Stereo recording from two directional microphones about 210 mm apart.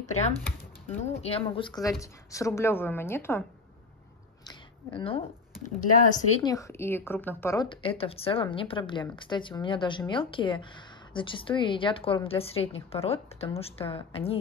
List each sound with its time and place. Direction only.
0.1 s speech: 30° left (ahead or behind); by 3.4 s 10° left (ahead or behind)
4.5 s a sound: 25° left (ahead or behind)
6.4 s a woman's voice: 15° left (ahead or behind)